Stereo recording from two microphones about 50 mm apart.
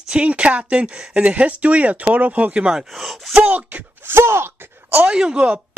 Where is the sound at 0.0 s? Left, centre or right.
Right.